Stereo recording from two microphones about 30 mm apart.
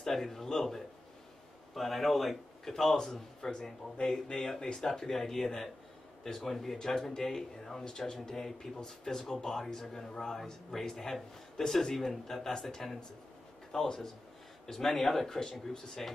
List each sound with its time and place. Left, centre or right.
0.0 s a man's voice: centre
3.3 s a man's voice: left; by 6.8 s centre
6.8 s a man's voice: centre